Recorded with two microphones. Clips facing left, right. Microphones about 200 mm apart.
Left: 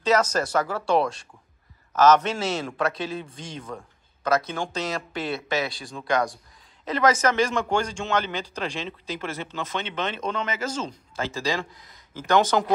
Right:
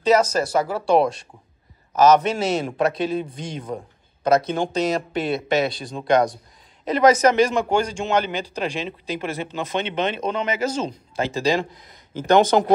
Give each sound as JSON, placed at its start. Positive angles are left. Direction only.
{"t": 0.3, "sound": "a man's voice", "side_deg": -10}